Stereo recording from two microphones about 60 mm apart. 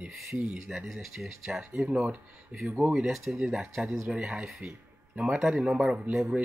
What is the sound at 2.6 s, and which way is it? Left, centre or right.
Speech, right.